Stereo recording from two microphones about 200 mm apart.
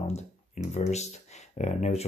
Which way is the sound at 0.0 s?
35° left (ahead or behind).